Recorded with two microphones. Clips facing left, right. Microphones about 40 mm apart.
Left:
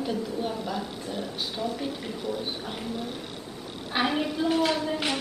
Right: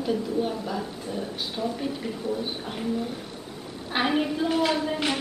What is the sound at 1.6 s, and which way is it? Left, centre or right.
Speech, left.